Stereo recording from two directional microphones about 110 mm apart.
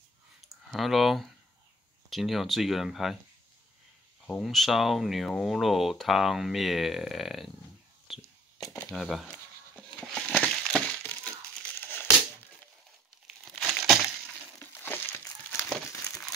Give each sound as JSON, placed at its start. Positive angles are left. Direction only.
{"t": 0.7, "sound": "speech", "side_deg": 0}
{"t": 4.4, "sound": "speech", "side_deg": 0}
{"t": 9.8, "sound": "a sound", "side_deg": 5}
{"t": 10.4, "sound": "crushing", "side_deg": 5}
{"t": 11.1, "sound": "crumpling", "side_deg": 15}
{"t": 13.5, "sound": "crumpling", "side_deg": 0}
{"t": 14.6, "sound": "a sound", "side_deg": 20}